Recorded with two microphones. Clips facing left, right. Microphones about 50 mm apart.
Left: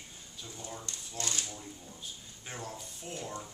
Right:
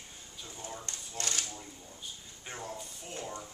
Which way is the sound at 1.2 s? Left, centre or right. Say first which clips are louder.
Even; right.